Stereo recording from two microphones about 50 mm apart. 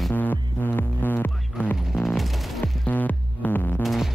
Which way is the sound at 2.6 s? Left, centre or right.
Left.